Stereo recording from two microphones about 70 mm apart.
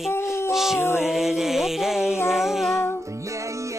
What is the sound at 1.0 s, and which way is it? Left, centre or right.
Mantra, centre.